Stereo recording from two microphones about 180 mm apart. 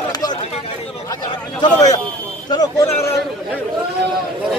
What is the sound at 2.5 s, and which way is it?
Speech, 20° left (ahead or behind).